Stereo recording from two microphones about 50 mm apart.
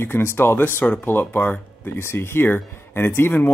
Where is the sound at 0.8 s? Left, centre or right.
Left.